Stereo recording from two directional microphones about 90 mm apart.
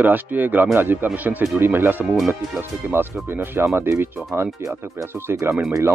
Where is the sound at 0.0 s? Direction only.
20° right (ahead or behind).